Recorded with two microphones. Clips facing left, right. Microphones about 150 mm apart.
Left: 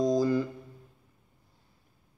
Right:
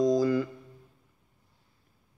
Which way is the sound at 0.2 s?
25° left (ahead or behind).